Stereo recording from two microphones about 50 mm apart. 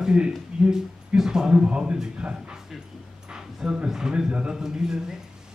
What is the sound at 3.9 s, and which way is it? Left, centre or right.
A man's voice, centre.